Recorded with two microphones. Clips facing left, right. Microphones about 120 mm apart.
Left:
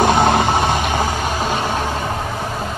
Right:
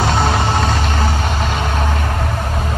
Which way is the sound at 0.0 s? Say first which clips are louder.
Left 3 dB; 50° left (ahead or behind).